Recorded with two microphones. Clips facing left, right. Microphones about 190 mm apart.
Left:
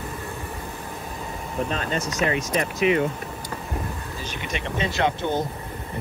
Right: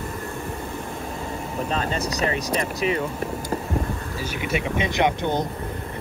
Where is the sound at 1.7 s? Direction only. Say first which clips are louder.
Right 2 dB; 35° right (ahead or behind).